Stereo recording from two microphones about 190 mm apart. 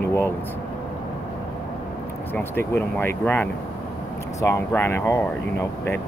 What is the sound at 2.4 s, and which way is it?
Speech, 10° left (ahead or behind).